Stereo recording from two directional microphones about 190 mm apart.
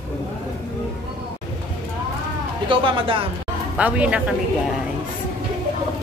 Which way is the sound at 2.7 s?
30° right (ahead or behind).